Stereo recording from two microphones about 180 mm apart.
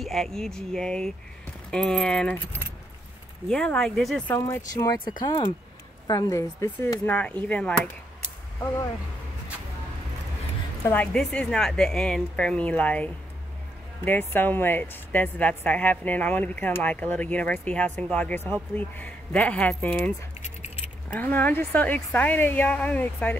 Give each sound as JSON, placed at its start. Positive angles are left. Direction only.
{"t": 0.0, "sound": "speech", "side_deg": 0}
{"t": 4.4, "sound": "a woman's voice", "side_deg": 20}
{"t": 10.9, "sound": "a woman's voice", "side_deg": 5}